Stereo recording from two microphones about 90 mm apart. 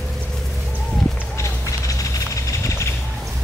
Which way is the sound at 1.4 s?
40° left (ahead or behind).